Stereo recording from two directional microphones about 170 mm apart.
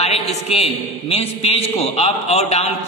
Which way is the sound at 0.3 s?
40° left (ahead or behind).